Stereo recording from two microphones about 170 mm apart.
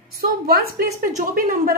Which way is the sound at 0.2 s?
60° right (ahead or behind).